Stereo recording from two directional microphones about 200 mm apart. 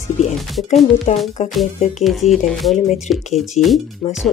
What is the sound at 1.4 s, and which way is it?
Speech, 35° left (ahead or behind).